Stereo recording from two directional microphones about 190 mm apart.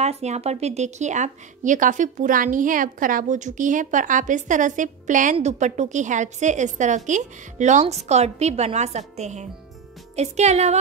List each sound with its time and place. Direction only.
0.0 s a woman's voice: 35° right (ahead or behind)